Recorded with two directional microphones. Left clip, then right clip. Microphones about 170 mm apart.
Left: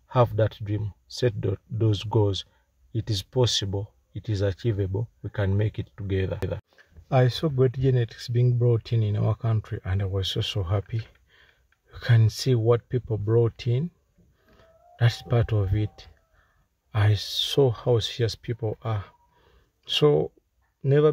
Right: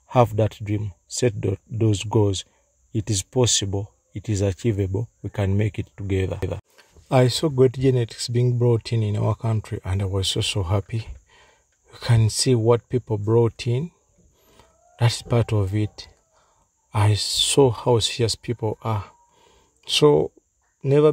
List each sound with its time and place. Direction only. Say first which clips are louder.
0.1 s speech: right 4 dB; 15° right (ahead or behind)
19.4 s a sound: right 5 dB; 10° right (ahead or behind)
20.8 s speech: right 4 dB; 10° right (ahead or behind)